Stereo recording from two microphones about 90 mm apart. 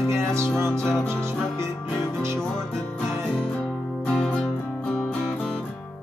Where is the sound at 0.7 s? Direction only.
10° left (ahead or behind).